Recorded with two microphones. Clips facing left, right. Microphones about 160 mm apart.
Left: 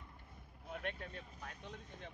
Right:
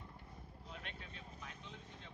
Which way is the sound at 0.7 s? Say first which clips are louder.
Left 9 dB; 55° left (ahead or behind).